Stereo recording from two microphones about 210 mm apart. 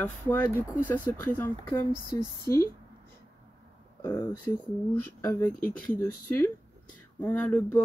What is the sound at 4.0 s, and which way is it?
Speech, 10° left (ahead or behind).